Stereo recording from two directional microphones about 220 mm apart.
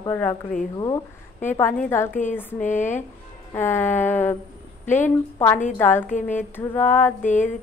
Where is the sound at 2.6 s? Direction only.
35° left (ahead or behind).